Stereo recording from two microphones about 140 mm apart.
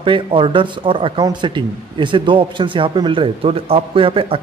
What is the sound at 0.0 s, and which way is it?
A man's voice, 40° right (ahead or behind).